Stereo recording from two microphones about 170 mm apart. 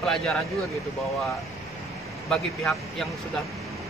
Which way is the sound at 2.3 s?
Centre (ahead or behind).